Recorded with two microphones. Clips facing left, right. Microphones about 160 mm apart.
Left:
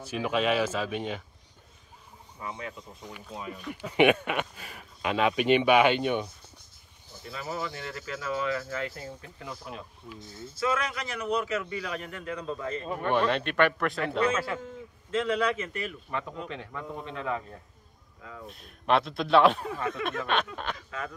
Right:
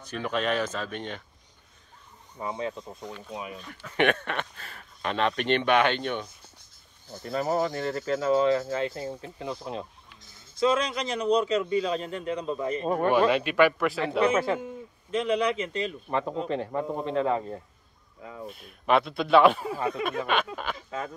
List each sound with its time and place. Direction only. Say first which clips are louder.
0.0 s speech: left 1 dB; 5° left (ahead or behind)
2.4 s speech: right 6 dB; 30° right (ahead or behind)
3.5 s speech: left 5 dB; 15° left (ahead or behind)
7.2 s a man's voice: right 9 dB; 45° right (ahead or behind); by 12.8 s 20° right (ahead or behind)
13.3 s a man's voice: right 3 dB; 5° right (ahead or behind); by 16.0 s 20° right (ahead or behind)
16.1 s speech: right 7 dB; 35° right (ahead or behind)
18.5 s a man's voice: right 2 dB; centre (ahead or behind)